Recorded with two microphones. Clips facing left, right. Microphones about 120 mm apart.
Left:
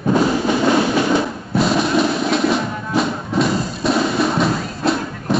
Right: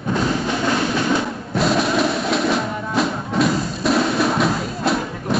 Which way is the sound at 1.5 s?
Centre (ahead or behind).